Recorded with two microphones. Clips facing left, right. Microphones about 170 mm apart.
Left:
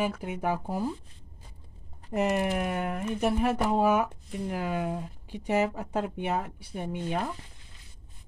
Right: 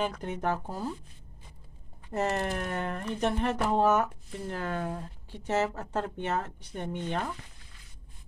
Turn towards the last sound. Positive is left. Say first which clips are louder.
# left 2 dB
turn(degrees=10)  # may be behind; listen again after turning